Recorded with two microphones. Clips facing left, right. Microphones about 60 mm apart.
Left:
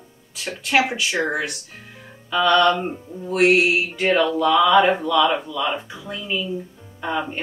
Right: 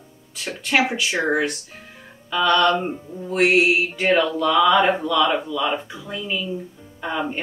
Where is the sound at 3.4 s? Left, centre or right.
Centre.